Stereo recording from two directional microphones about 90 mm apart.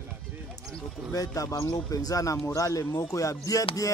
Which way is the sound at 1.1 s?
40° left (ahead or behind).